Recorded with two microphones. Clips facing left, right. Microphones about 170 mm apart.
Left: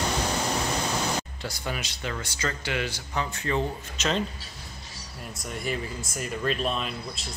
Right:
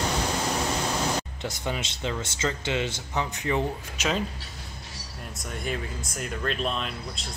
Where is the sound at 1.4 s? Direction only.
20° right (ahead or behind).